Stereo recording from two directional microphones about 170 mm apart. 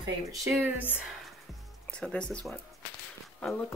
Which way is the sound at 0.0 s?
20° right (ahead or behind).